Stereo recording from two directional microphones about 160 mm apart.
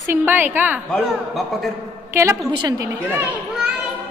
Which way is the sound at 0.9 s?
Centre (ahead or behind).